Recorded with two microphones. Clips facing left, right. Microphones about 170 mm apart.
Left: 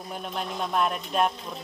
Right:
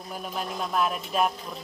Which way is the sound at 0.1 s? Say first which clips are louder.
Even; centre (ahead or behind).